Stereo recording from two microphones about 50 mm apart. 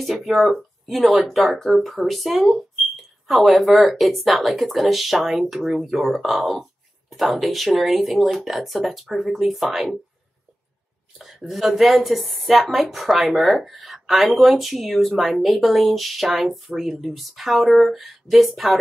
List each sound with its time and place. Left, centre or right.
0.0 s speech: centre
11.1 s speech: centre